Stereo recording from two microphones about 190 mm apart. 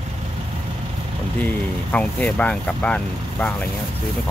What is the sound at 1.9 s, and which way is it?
Speech, 5° left (ahead or behind).